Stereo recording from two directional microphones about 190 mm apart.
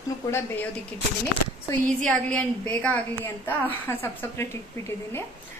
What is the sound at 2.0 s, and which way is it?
A woman's voice, 5° left (ahead or behind).